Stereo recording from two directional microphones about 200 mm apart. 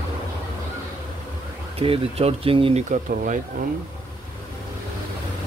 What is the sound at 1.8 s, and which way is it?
Speech, 30° right (ahead or behind).